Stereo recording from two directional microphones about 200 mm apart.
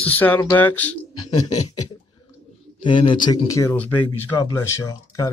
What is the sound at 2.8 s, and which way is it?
Speech, 25° left (ahead or behind).